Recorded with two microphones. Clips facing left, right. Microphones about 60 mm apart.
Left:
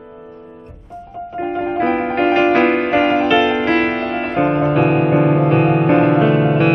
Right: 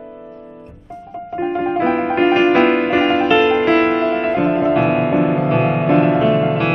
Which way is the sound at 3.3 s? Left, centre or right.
Centre.